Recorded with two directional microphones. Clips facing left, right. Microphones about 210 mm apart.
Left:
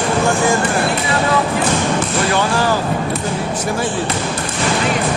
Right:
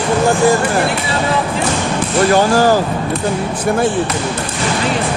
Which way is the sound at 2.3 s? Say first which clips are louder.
Right 6 dB; 40° right (ahead or behind).